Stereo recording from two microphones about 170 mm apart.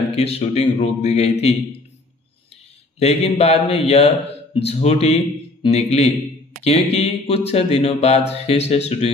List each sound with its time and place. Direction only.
0.1 s speech: 35° left (ahead or behind)
3.0 s speech: 35° left (ahead or behind)